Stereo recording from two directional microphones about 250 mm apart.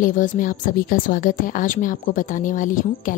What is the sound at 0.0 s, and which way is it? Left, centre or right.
A woman's voice, left.